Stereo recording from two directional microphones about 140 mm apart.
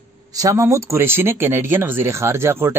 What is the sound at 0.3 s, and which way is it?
Speech, 25° right (ahead or behind).